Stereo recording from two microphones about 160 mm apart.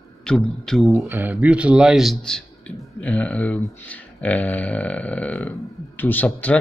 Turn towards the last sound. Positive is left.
turn(degrees=10)  # may be behind; listen again after turning